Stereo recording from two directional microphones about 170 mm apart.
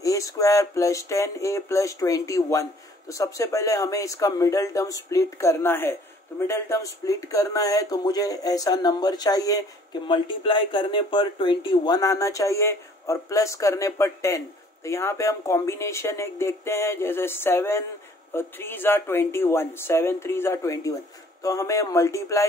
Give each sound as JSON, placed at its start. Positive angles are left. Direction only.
{"t": 0.0, "sound": "a man's voice", "side_deg": 20}